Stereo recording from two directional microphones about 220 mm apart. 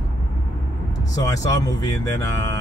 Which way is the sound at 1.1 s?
15° left (ahead or behind).